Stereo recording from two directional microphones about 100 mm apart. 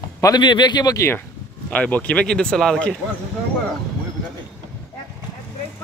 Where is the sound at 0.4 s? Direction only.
50° left (ahead or behind).